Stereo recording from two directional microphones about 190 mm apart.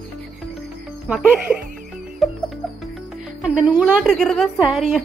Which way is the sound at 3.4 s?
5° right (ahead or behind).